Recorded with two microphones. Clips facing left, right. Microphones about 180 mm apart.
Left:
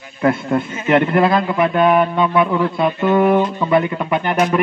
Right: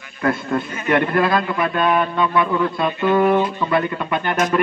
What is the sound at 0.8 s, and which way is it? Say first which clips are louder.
A man's voice: left 4 dB; 25° left (ahead or behind).